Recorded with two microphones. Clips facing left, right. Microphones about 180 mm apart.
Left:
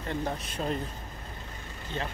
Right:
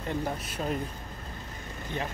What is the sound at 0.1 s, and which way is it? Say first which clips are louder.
Speech: even; 10° right (ahead or behind).